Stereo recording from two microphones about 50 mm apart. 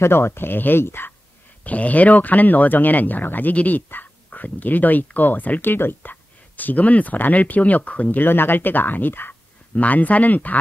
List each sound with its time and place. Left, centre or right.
0.0 s speech: left
1.6 s speech: left
6.5 s speech: left
8.2 s speech: left
9.8 s speech: left